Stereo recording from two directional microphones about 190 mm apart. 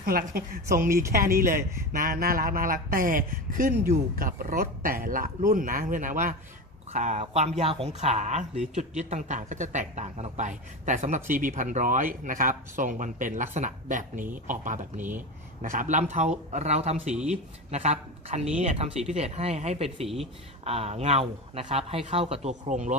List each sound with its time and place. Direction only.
0.0 s a man's voice: 50° right (ahead or behind)
17.1 s speech: 5° right (ahead or behind)
17.6 s speech: 35° right (ahead or behind)